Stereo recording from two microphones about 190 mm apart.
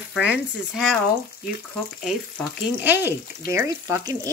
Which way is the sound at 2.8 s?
10° right (ahead or behind).